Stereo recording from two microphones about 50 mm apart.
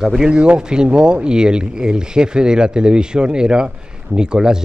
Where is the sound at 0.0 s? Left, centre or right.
Centre.